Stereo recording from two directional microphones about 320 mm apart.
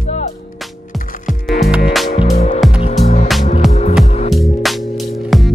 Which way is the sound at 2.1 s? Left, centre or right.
Centre.